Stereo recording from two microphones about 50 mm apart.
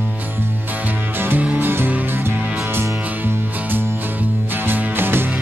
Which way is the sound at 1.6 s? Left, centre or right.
Right.